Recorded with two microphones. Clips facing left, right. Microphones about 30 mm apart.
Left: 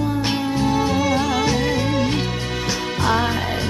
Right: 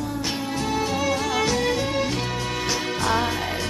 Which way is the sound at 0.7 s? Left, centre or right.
Left.